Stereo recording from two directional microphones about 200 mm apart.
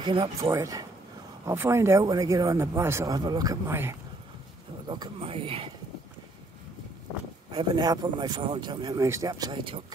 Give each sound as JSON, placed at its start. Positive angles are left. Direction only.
{"t": 0.0, "sound": "speech", "side_deg": -25}
{"t": 7.5, "sound": "speech", "side_deg": -25}